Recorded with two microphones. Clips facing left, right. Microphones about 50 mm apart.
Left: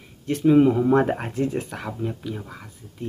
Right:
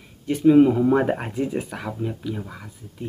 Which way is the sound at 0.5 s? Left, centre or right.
Centre.